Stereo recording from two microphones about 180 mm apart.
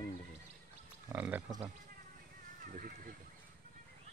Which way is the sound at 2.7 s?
50° right (ahead or behind).